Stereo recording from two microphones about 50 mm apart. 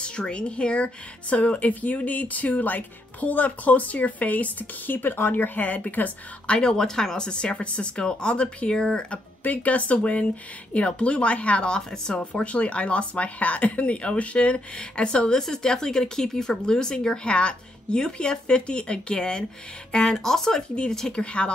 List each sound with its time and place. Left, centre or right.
0.0 s a woman's voice: centre
6.4 s speech: centre
9.4 s speech: left; by 20.6 s centre
20.7 s speech: centre